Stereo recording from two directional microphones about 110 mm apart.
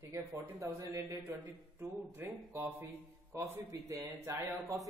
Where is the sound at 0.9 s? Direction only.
15° right (ahead or behind).